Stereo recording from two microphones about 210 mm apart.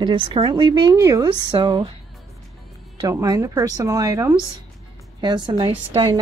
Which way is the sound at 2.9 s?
15° right (ahead or behind).